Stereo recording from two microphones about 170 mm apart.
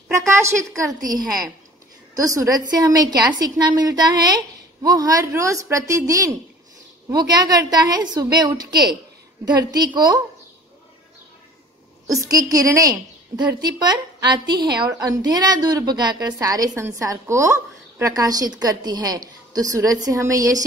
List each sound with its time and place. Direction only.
0.3 s a woman's voice: 15° right (ahead or behind)
1.0 s a woman's voice: 55° right (ahead or behind)
2.1 s a woman's voice: 20° right (ahead or behind)
12.2 s a woman's voice: 20° right (ahead or behind)